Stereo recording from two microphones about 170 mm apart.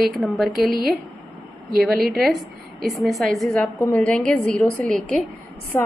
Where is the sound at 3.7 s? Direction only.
20° left (ahead or behind).